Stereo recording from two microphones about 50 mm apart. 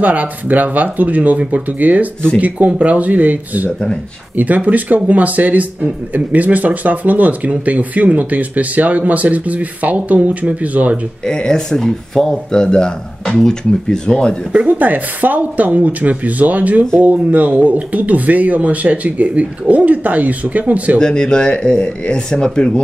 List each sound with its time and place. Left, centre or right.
0.0 s speech: right
11.2 s speech: centre
14.5 s speech: right
21.0 s speech: centre